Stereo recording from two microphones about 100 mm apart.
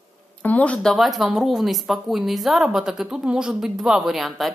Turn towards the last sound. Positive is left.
turn(degrees=0)  # may be behind; listen again after turning